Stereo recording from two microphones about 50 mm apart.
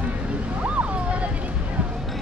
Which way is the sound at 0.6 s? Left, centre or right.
Right.